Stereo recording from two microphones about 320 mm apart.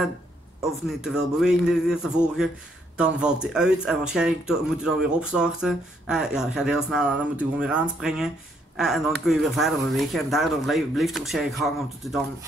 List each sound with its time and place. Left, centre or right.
0.8 s speech: centre